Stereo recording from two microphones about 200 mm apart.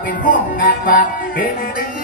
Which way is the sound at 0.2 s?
45° left (ahead or behind).